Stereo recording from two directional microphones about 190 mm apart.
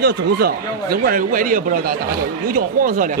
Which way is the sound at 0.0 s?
55° right (ahead or behind).